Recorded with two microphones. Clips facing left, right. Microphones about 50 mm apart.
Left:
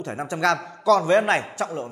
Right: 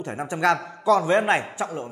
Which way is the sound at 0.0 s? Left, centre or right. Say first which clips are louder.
Even; centre.